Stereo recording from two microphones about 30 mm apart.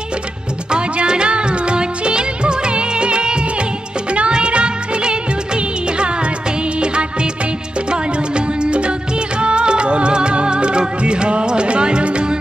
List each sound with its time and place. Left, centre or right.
0.7 s music: right
4.3 s music of bollywood: right
6.8 s music of bollywood: right
7.9 s music: right